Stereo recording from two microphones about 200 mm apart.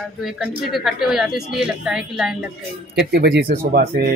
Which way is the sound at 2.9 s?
55° right (ahead or behind).